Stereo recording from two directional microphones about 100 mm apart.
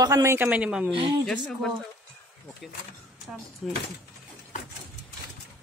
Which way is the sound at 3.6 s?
Centre (ahead or behind).